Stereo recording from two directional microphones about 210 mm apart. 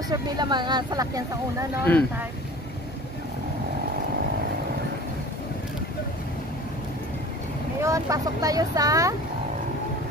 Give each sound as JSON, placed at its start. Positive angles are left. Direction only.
{"t": 0.1, "sound": "speech", "side_deg": -20}
{"t": 1.9, "sound": "speech", "side_deg": 10}
{"t": 7.8, "sound": "speech", "side_deg": -15}